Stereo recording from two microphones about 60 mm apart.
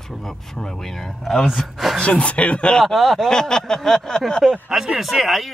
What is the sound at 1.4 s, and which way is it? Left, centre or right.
Speech, centre.